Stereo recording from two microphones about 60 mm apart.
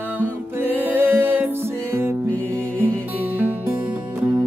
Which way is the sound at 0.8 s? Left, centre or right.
Right.